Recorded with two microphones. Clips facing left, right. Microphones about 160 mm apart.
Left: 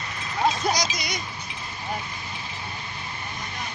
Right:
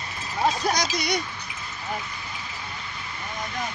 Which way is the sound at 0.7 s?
65° right (ahead or behind).